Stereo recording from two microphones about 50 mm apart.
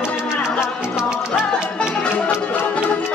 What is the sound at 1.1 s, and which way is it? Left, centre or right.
Music, centre.